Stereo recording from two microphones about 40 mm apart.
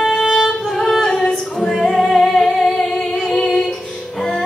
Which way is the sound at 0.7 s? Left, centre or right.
Centre.